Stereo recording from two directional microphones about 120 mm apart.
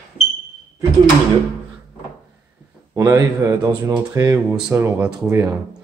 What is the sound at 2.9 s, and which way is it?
A man's voice, 30° right (ahead or behind).